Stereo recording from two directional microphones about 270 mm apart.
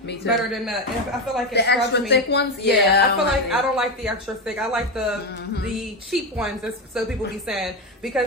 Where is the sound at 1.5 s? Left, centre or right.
Left.